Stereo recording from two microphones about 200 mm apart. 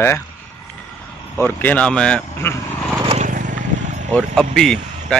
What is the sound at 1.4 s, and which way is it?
Speech, 10° left (ahead or behind).